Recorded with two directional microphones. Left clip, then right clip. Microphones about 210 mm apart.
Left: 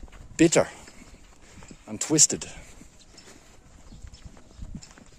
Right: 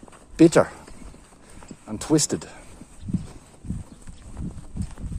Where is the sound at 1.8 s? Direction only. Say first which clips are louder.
Right 1 dB; 15° left (ahead or behind).